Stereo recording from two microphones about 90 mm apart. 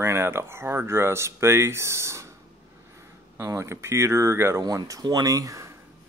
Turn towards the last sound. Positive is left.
turn(degrees=-40)  # may be behind; listen again after turning